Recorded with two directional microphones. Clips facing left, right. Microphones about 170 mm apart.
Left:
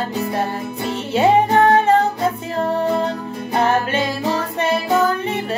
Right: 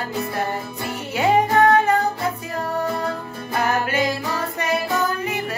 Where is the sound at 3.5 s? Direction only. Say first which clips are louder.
Left 3 dB; 30° left (ahead or behind).